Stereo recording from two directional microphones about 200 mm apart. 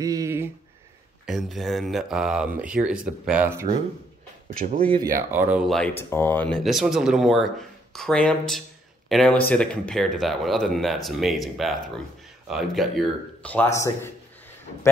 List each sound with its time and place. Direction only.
0.0 s a sound: 15° right (ahead or behind)
1.2 s speech: centre (ahead or behind)
5.1 s speech: 10° right (ahead or behind)
5.8 s speech: 10° left (ahead or behind)